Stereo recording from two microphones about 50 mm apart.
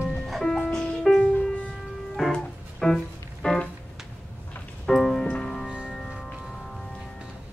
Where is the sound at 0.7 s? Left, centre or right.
Centre.